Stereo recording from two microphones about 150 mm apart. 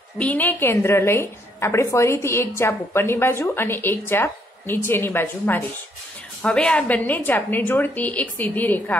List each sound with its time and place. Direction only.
0.2 s a woman's voice: 10° left (ahead or behind)